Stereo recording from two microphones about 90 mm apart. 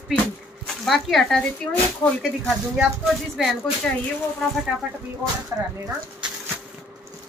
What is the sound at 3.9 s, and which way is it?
Speech, 15° left (ahead or behind).